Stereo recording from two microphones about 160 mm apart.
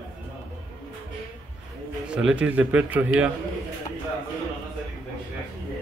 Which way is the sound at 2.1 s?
5° right (ahead or behind).